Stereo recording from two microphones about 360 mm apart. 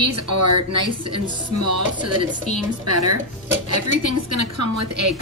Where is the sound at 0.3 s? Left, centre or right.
Right.